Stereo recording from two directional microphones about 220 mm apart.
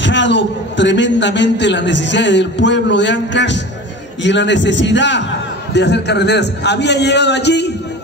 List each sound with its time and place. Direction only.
0.0 s a man's voice: 55° left (ahead or behind)